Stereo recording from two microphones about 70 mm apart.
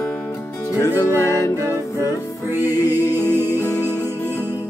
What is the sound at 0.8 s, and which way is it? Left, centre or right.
Music, left.